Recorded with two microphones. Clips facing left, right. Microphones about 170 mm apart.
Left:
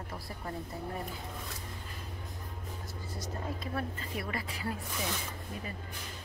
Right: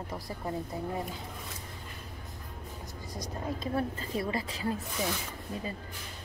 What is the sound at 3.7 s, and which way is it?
Speech, 25° right (ahead or behind).